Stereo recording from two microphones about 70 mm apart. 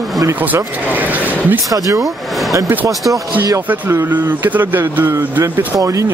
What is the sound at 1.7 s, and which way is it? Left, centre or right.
Speech, right.